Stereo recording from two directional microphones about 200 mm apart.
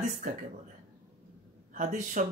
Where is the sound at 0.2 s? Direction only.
40° right (ahead or behind).